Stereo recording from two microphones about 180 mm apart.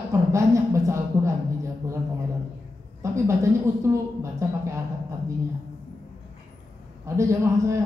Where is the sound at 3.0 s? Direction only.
15° right (ahead or behind).